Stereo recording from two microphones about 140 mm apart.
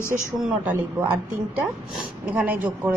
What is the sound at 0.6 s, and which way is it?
Speech, 15° right (ahead or behind).